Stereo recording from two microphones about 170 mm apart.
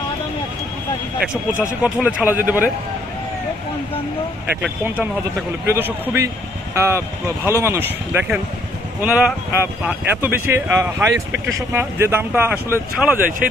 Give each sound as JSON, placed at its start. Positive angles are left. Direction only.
{"t": 1.8, "sound": "speech", "side_deg": -5}
{"t": 4.6, "sound": "speech", "side_deg": -10}